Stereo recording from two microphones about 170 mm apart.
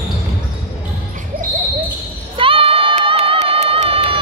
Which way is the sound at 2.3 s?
30° right (ahead or behind).